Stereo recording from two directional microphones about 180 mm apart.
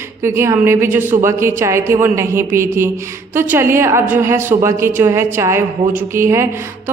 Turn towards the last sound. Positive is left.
turn(degrees=-15)  # may be behind; listen again after turning